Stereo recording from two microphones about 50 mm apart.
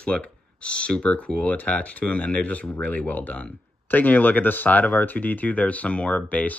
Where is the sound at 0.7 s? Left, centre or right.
Left.